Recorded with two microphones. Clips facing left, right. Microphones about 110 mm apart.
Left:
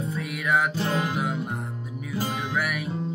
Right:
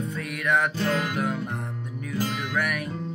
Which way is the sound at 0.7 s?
25° left (ahead or behind).